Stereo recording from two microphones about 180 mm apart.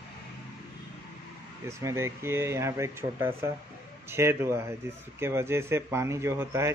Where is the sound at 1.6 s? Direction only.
15° right (ahead or behind).